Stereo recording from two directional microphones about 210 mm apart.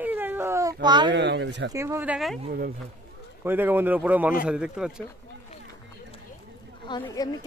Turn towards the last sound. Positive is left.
turn(degrees=20)  # may be behind; listen again after turning